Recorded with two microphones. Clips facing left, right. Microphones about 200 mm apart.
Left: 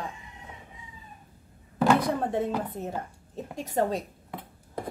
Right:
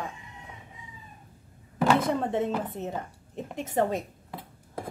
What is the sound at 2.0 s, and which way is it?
A woman's voice, 20° right (ahead or behind).